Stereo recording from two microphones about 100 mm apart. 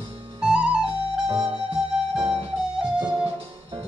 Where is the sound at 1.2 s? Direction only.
45° right (ahead or behind).